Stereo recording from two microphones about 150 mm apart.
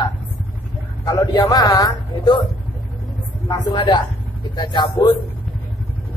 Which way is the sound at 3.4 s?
30° left (ahead or behind).